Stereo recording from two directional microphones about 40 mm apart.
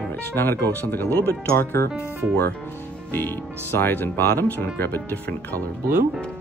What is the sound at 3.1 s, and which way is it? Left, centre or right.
Speech, left.